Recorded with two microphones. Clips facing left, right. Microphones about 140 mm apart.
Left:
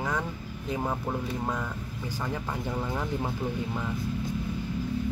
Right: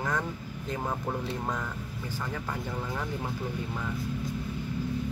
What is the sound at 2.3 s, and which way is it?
Speech, 20° left (ahead or behind).